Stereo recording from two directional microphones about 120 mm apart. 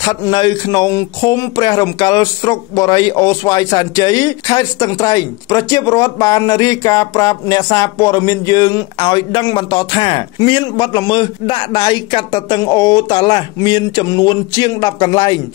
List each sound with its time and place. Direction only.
0.2 s speech: 40° left (ahead or behind)